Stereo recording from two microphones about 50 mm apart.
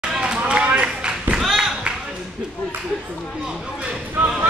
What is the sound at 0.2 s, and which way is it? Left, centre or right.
Run, centre.